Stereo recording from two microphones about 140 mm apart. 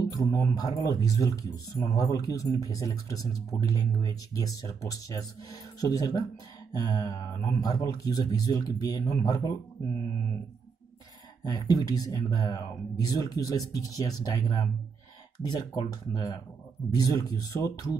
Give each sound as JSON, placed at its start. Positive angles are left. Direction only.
{"t": 0.0, "sound": "speech", "side_deg": 25}
{"t": 11.4, "sound": "speech", "side_deg": 25}